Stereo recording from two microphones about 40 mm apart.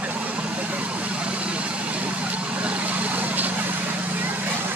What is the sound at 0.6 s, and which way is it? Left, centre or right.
Vehicle, right.